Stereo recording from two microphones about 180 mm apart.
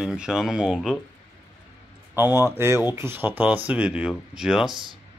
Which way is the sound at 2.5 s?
15° right (ahead or behind).